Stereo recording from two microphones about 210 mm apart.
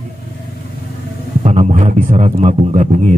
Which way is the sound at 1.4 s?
35° right (ahead or behind).